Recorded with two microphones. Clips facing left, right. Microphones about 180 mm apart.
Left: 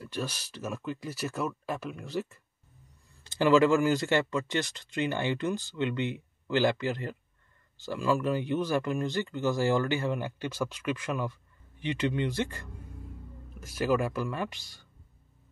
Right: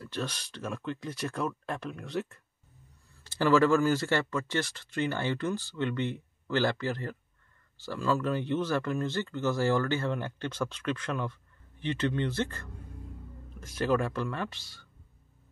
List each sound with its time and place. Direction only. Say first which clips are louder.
0.0 s speech: even; 10° left (ahead or behind)
3.3 s speech: left 1 dB; 15° left (ahead or behind)